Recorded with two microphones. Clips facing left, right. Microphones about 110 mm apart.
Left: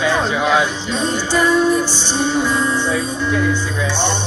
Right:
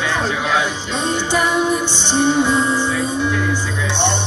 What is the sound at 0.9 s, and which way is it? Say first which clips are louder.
Music: left 1 dB; 20° right (ahead or behind).